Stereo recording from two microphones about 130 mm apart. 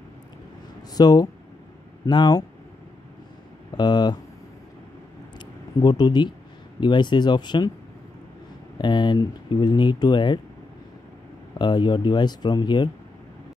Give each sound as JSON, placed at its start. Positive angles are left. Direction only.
{"t": 0.9, "sound": "speech", "side_deg": 30}
{"t": 3.7, "sound": "speech", "side_deg": 35}
{"t": 5.4, "sound": "a sound", "side_deg": 30}
{"t": 6.8, "sound": "speech", "side_deg": 35}
{"t": 8.7, "sound": "speech", "side_deg": 35}
{"t": 11.5, "sound": "speech", "side_deg": 35}